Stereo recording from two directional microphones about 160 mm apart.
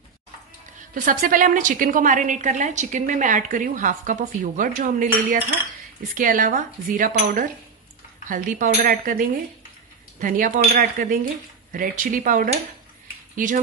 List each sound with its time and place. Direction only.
0.9 s a woman's voice: 55° right (ahead or behind)
10.1 s speech: 55° right (ahead or behind)